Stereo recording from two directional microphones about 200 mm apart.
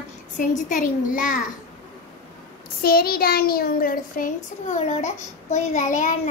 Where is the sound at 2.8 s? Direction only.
50° left (ahead or behind).